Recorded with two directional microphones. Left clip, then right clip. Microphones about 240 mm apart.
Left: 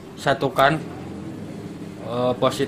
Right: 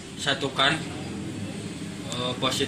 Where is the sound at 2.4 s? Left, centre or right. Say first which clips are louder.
Left 4 dB; left.